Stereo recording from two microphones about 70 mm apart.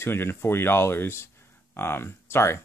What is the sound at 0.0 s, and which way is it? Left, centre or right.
Speech, left.